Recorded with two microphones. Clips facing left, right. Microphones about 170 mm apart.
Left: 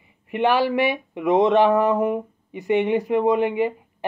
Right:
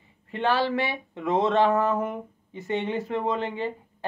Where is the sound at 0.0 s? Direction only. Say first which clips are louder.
Left 6 dB; 15° left (ahead or behind).